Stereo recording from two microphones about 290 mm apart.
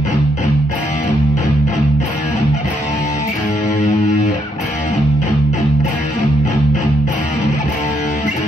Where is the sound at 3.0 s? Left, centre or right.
Left.